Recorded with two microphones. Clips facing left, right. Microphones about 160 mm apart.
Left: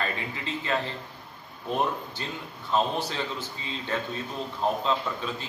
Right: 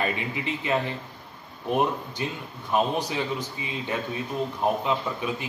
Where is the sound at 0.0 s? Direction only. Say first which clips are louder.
Right 4 dB; 15° right (ahead or behind).